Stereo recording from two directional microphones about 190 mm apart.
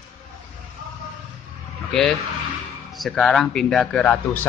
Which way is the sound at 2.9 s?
Centre (ahead or behind).